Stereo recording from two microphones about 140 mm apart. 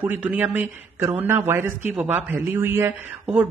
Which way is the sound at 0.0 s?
10° right (ahead or behind).